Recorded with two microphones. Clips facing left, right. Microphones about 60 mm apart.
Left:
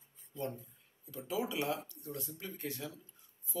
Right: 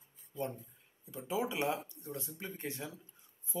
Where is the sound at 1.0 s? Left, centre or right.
Right.